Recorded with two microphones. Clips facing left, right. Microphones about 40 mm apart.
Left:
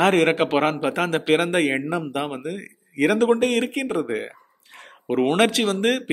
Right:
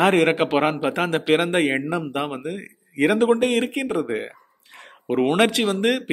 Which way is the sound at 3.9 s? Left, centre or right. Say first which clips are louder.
Even; centre.